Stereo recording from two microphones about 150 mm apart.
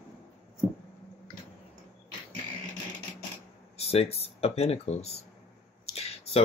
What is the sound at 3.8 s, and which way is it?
Speech, 40° left (ahead or behind).